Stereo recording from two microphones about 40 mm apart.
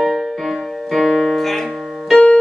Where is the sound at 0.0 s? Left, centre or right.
Centre.